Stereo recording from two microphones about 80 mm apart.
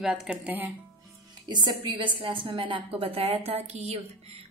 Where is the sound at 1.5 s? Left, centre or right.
Right.